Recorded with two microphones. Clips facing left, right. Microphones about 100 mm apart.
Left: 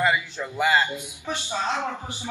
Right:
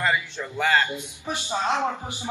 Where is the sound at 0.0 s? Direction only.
10° left (ahead or behind).